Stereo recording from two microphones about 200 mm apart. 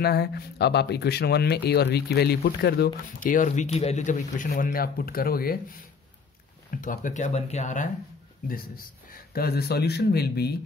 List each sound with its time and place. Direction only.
0.0 s speech: 55° left (ahead or behind)
6.7 s speech: 40° left (ahead or behind)